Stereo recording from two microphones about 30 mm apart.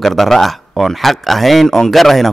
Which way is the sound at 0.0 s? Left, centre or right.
Centre.